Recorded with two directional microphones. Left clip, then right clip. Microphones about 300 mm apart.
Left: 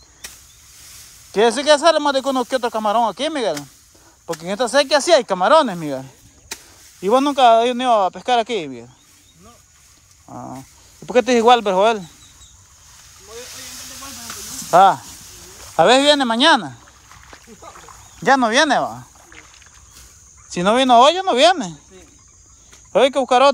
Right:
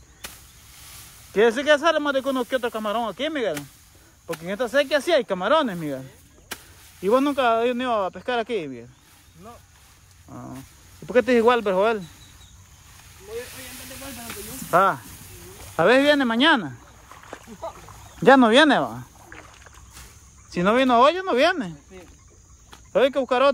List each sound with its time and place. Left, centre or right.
1.3 s speech: centre
10.2 s a sound: centre
11.1 s speech: centre
13.3 s snake: centre
15.7 s speech: centre
17.7 s speech: centre
20.4 s speech: centre
22.9 s speech: centre